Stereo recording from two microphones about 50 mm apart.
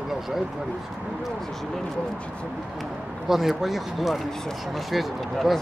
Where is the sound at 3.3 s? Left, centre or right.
Centre.